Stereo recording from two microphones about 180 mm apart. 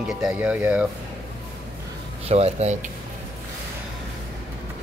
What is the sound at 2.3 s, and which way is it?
Speech, 35° right (ahead or behind).